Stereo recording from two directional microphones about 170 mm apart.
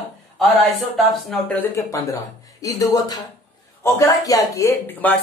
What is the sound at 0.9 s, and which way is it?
Speech, centre (ahead or behind).